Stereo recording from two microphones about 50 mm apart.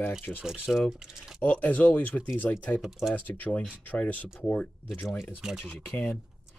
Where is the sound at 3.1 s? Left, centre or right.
Left.